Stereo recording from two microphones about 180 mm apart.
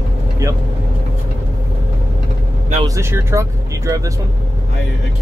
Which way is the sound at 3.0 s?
15° right (ahead or behind).